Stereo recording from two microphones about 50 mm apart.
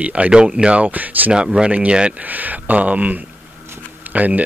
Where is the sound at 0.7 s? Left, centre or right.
Right.